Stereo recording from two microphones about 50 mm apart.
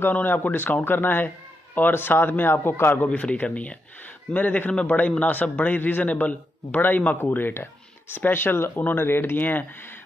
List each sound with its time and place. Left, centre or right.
0.1 s a man's voice: left
3.1 s a man's voice: left
7.2 s a man's voice: left